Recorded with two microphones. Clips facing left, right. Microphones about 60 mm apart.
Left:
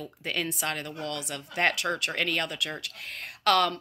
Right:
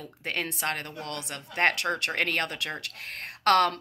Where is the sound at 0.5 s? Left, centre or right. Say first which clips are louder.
Right 1 dB; right.